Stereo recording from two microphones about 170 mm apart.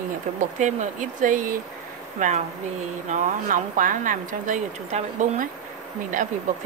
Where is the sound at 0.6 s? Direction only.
45° right (ahead or behind).